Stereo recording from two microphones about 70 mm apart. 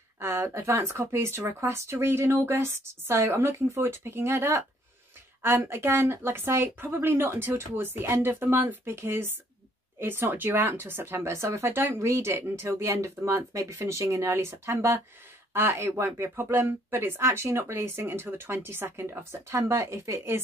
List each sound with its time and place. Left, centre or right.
0.2 s speech: right